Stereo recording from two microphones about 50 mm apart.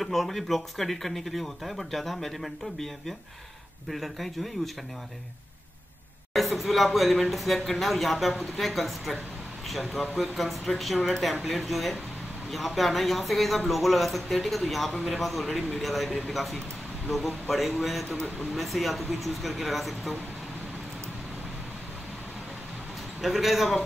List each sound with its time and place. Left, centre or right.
0.0 s speech: centre
6.3 s speech: centre
15.4 s speech: left
15.8 s speech: centre
23.2 s speech: centre